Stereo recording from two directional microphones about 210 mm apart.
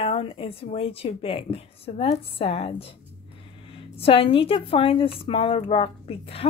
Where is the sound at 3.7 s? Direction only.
25° left (ahead or behind).